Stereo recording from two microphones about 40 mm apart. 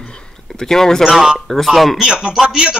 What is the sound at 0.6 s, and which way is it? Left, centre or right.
Speech, centre.